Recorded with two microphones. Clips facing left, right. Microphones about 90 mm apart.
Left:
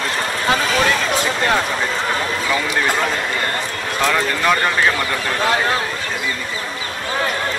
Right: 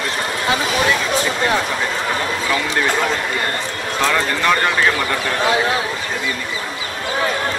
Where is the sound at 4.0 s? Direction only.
5° left (ahead or behind).